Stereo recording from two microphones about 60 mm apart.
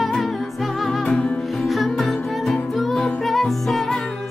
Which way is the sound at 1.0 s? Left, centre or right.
Centre.